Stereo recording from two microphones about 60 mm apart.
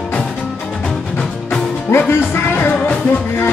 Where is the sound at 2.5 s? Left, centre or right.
Left.